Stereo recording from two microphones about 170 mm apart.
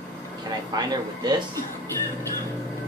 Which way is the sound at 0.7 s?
25° right (ahead or behind).